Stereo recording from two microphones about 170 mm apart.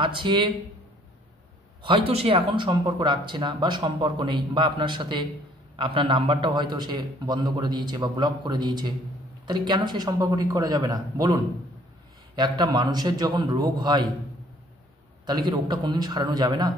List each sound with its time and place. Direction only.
0.0 s speech: 30° right (ahead or behind)
1.8 s speech: 30° right (ahead or behind)
12.4 s speech: 25° right (ahead or behind)
15.2 s speech: 25° right (ahead or behind)